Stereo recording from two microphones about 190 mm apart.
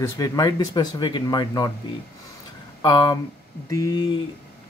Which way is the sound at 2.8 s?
20° left (ahead or behind).